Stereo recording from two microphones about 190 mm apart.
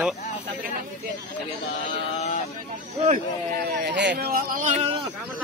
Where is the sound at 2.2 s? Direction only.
35° left (ahead or behind).